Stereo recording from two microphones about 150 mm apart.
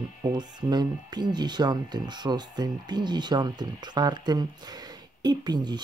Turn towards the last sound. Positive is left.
turn(degrees=-30)  # may be behind; listen again after turning